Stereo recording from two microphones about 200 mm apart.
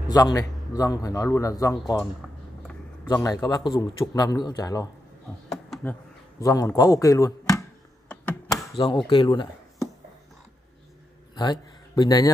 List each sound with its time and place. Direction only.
0.1 s a man's voice: 20° left (ahead or behind)
3.1 s a man's voice: 15° left (ahead or behind)
5.5 s a sound: centre (ahead or behind)
6.4 s a man's voice: 15° left (ahead or behind)
8.1 s a sound: 5° left (ahead or behind)
8.7 s speech: 25° left (ahead or behind)
11.3 s speech: 20° left (ahead or behind)